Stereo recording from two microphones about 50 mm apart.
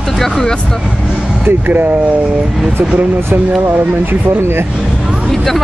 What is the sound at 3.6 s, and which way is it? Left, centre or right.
Speech, right.